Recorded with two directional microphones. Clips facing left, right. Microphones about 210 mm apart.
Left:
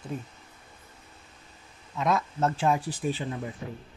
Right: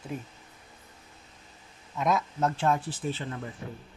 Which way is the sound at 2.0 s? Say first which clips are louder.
Left 1 dB; centre (ahead or behind).